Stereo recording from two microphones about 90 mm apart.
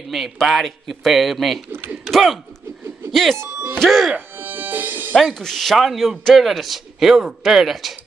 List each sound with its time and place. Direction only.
0.1 s a man's voice: centre (ahead or behind)
1.7 s a sound: 25° right (ahead or behind)
2.0 s a man's voice: centre (ahead or behind)
4.4 s music: 20° right (ahead or behind)
5.1 s a man's voice: 5° left (ahead or behind)